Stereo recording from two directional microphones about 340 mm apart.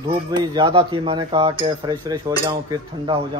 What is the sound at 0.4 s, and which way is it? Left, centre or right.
Speech, centre.